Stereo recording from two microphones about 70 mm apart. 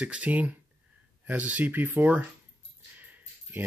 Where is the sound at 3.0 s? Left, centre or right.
Right.